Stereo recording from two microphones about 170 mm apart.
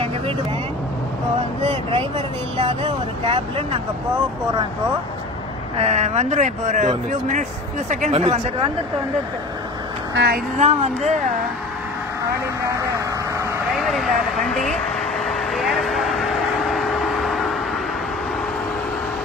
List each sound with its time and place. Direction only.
1.6 s speech: 30° right (ahead or behind)
5.8 s speech: 40° right (ahead or behind)
10.1 s speech: 65° right (ahead or behind)
10.6 s speech: 35° right (ahead or behind)
14.5 s vehicle: centre (ahead or behind)